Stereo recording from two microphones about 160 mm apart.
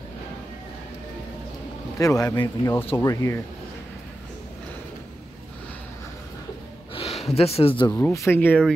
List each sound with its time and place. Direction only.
2.0 s speech: 20° left (ahead or behind)
6.9 s a sound: 40° left (ahead or behind)
7.9 s speech: 15° left (ahead or behind)